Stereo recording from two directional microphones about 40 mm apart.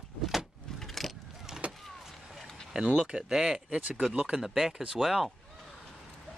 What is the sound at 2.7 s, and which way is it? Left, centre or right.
Speech, centre.